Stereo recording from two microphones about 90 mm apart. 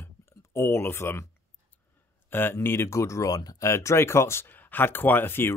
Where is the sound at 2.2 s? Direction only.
25° left (ahead or behind).